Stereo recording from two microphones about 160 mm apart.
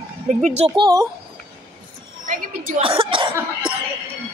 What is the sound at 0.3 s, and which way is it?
Speech, 45° right (ahead or behind).